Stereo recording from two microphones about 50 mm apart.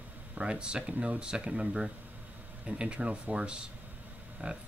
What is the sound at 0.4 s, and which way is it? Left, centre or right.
Speech, centre.